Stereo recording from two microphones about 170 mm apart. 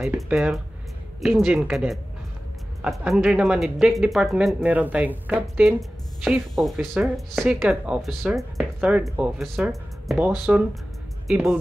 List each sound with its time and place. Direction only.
0.0 s speech: 5° right (ahead or behind)